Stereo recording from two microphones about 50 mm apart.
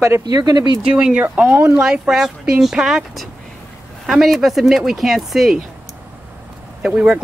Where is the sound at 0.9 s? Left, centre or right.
Right.